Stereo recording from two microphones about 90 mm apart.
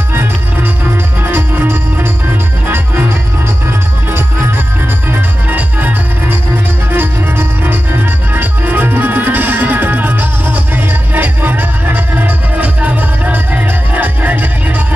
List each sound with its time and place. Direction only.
1.3 s music: 25° right (ahead or behind)
6.9 s music: 25° right (ahead or behind)